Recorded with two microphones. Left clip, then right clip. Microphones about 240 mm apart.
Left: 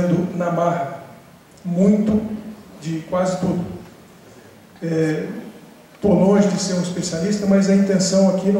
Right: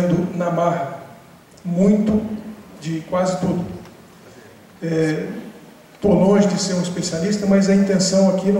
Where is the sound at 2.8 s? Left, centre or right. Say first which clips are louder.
Right 1 dB; centre.